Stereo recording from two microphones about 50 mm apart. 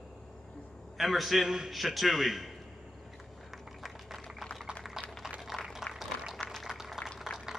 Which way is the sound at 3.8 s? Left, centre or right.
Centre.